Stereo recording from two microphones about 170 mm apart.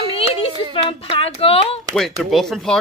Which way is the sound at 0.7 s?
30° left (ahead or behind).